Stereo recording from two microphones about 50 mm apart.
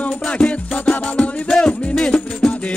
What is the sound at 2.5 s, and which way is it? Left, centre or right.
Music, left.